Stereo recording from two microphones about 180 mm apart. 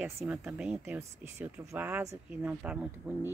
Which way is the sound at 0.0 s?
5° right (ahead or behind).